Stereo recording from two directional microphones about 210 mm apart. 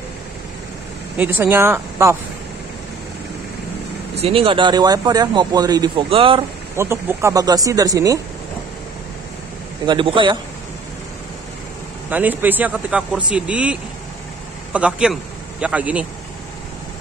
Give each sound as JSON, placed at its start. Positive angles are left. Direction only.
{"t": 1.1, "sound": "a man's voice", "side_deg": -10}
{"t": 4.2, "sound": "speech", "side_deg": -25}
{"t": 6.8, "sound": "a man's voice", "side_deg": -10}
{"t": 9.8, "sound": "speech", "side_deg": -25}
{"t": 12.1, "sound": "a man's voice", "side_deg": -10}